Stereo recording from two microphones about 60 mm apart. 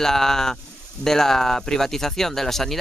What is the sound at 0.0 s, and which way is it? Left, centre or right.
Speech, centre.